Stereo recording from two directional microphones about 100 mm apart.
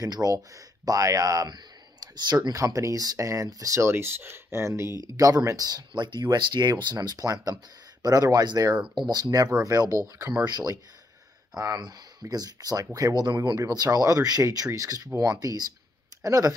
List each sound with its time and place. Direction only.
0.0 s speech: 35° right (ahead or behind)
5.0 s speech: 40° right (ahead or behind)